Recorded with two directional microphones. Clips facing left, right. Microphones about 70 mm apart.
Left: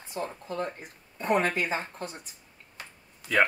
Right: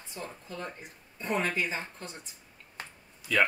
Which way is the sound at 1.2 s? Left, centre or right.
Left.